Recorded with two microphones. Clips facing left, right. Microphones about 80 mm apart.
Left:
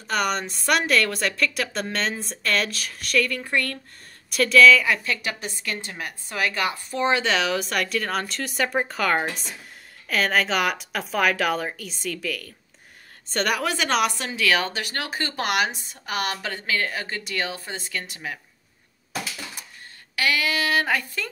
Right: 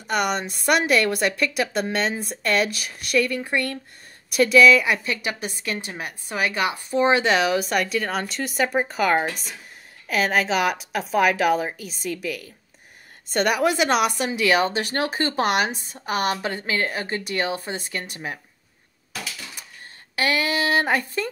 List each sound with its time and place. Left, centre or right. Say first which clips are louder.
0.0 s a woman's voice: right 1 dB; centre
14.8 s speech: right 5 dB; right
20.2 s speech: right 1 dB; right